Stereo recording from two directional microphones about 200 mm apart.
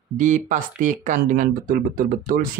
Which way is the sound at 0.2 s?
40° right (ahead or behind).